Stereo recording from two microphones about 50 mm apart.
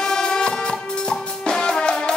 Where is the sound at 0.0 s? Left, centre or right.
Centre.